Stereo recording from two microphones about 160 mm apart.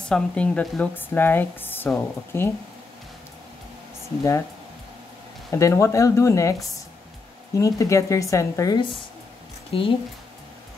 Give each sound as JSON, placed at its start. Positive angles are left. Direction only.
{"t": 0.1, "sound": "speech", "side_deg": 5}
{"t": 5.5, "sound": "speech", "side_deg": 20}
{"t": 7.5, "sound": "speech", "side_deg": 20}
{"t": 9.7, "sound": "speech", "side_deg": 35}